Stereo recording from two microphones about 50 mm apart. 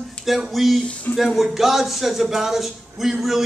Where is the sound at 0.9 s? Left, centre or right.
Left.